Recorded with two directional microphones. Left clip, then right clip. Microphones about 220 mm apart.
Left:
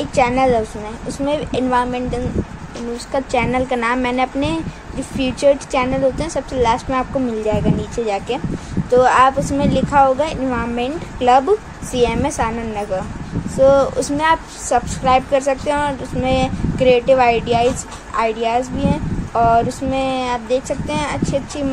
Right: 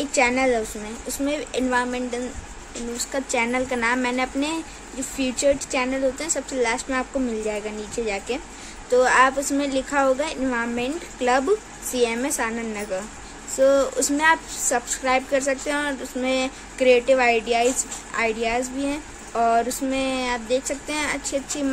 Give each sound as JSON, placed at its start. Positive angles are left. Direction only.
{"t": 0.0, "sound": "a woman's voice", "side_deg": -10}
{"t": 3.1, "sound": "a woman's voice", "side_deg": -10}